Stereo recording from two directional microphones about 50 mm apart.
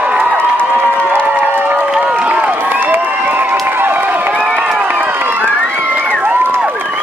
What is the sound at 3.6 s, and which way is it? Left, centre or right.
Crowd, right.